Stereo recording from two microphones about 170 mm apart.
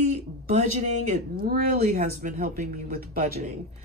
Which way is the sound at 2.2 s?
50° right (ahead or behind).